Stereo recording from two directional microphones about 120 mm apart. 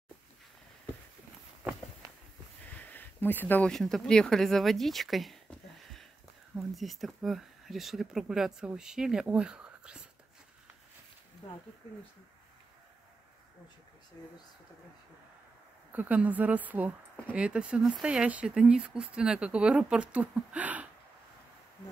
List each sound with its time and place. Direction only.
2.6 s a sound: 15° left (ahead or behind)
3.7 s speech: 5° left (ahead or behind)
14.2 s speech: 30° left (ahead or behind)
15.9 s speech: 15° right (ahead or behind)